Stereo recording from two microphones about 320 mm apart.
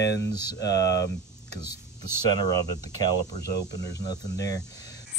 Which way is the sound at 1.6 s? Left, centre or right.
Centre.